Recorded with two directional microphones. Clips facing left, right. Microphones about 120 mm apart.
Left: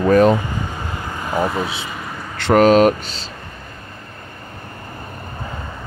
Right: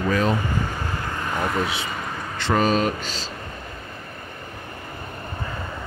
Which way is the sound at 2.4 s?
70° left (ahead or behind).